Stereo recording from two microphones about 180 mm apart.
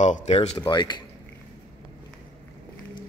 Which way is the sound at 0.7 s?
25° left (ahead or behind).